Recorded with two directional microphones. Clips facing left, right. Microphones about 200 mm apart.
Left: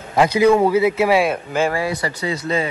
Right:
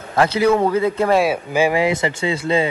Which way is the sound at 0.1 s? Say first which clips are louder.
Left 2 dB; 15° left (ahead or behind).